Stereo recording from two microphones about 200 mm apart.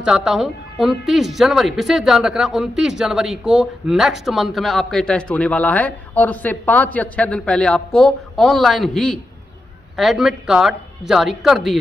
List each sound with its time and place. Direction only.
0.0 s a woman's voice: 5° right (ahead or behind)